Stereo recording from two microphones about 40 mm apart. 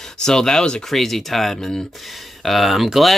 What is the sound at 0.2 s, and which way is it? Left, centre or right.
Speech, centre.